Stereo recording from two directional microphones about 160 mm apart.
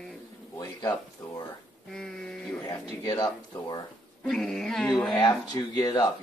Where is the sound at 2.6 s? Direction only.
25° left (ahead or behind).